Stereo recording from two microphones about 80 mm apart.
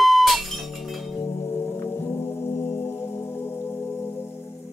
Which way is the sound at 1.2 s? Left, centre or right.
Left.